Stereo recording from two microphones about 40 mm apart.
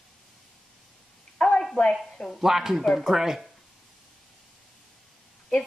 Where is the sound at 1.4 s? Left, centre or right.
Left.